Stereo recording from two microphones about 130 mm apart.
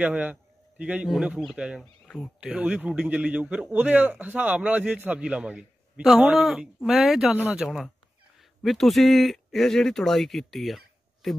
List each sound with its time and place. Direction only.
0.0 s a man's voice: 10° right (ahead or behind)
2.0 s a sound: 5° left (ahead or behind)
2.4 s a man's voice: 10° right (ahead or behind)
6.4 s speech: 5° right (ahead or behind)